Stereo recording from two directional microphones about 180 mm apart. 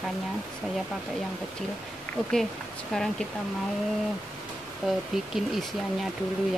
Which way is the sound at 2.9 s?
5° left (ahead or behind).